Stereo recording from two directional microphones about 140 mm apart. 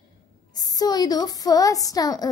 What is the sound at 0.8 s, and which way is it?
A woman's voice, 30° left (ahead or behind).